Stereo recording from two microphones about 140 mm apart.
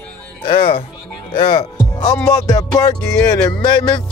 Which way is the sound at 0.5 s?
40° left (ahead or behind).